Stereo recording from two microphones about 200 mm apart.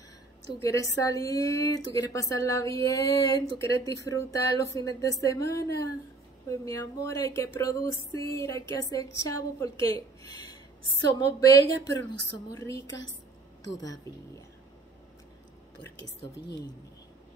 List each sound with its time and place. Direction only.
0.6 s a woman's voice: 15° left (ahead or behind)